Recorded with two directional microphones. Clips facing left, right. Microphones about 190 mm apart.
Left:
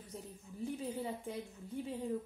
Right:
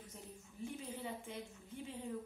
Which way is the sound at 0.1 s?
35° left (ahead or behind).